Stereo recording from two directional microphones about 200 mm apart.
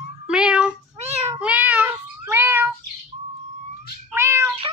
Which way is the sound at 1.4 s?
5° right (ahead or behind).